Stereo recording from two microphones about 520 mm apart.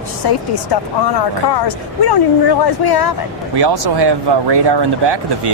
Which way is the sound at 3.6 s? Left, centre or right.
Right.